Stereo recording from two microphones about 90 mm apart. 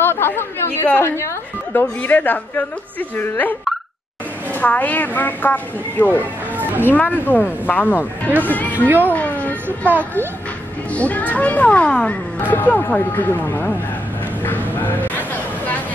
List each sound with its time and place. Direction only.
0.0 s chatter: 25° left (ahead or behind)
1.0 s a woman's voice: 30° left (ahead or behind)
6.1 s music: 20° right (ahead or behind)
6.9 s a woman's voice: 20° left (ahead or behind)
8.7 s speech: 20° right (ahead or behind)
9.1 s music: 15° left (ahead or behind)
9.7 s speech: 20° right (ahead or behind)
10.9 s a woman's voice: 15° left (ahead or behind)
14.4 s a sound: 20° left (ahead or behind)